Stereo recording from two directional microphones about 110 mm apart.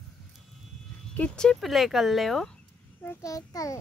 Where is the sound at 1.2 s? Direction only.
5° left (ahead or behind).